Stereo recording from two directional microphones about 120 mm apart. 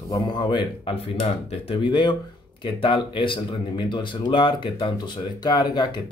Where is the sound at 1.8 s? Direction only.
40° left (ahead or behind).